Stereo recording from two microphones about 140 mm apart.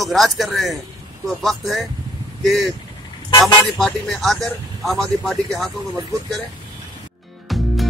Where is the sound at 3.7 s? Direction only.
5° left (ahead or behind).